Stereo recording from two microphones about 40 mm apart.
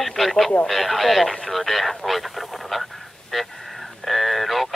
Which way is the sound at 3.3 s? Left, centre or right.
Centre.